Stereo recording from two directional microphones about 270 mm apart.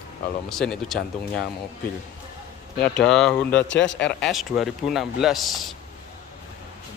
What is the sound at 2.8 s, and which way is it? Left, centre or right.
Speech, centre.